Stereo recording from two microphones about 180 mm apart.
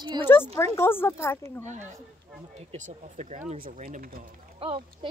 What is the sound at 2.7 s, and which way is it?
Speech, 40° right (ahead or behind).